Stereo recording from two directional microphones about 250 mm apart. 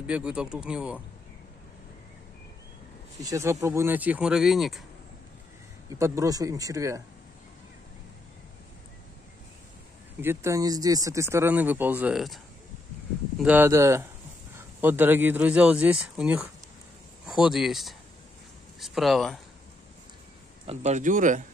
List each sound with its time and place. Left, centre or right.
0.0 s speech: centre
3.2 s speech: centre
5.9 s speech: centre
10.2 s speech: centre
13.4 s speech: centre
20.6 s speech: right